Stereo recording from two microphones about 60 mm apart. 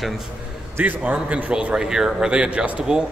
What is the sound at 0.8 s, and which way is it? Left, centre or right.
Speech, right.